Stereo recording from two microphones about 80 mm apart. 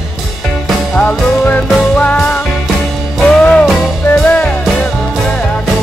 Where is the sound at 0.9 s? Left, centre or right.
Centre.